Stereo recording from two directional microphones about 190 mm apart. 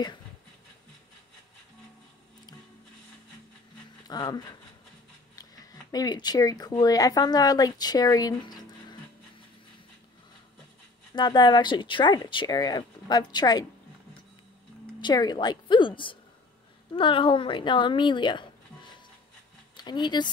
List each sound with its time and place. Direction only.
4.1 s speech: 20° left (ahead or behind)
11.1 s speech: 20° left (ahead or behind)
15.0 s a woman's voice: 20° left (ahead or behind)